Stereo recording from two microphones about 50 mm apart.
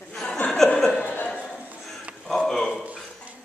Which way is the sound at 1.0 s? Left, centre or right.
Left.